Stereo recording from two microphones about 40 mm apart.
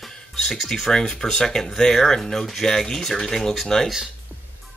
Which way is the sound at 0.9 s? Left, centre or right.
Centre.